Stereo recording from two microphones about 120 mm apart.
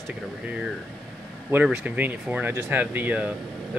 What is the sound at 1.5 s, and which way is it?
Speech, 15° right (ahead or behind).